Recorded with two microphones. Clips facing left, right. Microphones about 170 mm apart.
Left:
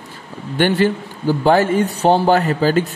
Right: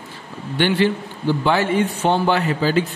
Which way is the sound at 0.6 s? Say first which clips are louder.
Left 2 dB; 45° left (ahead or behind).